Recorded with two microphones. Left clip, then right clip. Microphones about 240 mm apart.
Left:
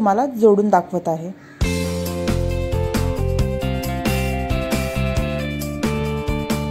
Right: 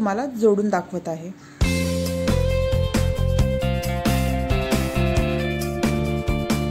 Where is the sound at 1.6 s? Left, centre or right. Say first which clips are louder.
Even; centre.